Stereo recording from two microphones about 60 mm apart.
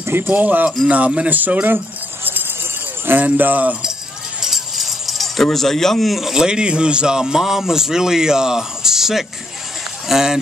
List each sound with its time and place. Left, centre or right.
0.0 s keys jangling: right
0.3 s speech: right
3.1 s speech: right
4.4 s speech: centre